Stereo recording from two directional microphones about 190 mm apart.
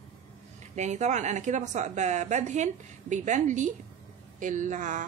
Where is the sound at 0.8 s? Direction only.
40° right (ahead or behind).